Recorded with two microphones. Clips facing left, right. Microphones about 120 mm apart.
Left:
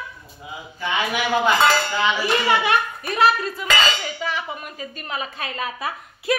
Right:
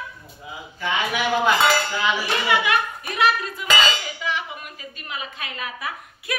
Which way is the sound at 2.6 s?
35° left (ahead or behind).